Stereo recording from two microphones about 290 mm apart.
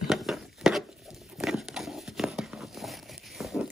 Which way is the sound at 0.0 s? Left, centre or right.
Centre.